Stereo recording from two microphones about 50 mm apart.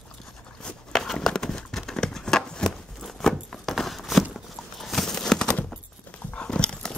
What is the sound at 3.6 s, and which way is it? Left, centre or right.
Walk, centre.